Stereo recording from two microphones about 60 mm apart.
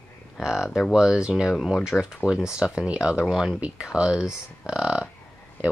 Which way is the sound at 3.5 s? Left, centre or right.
Centre.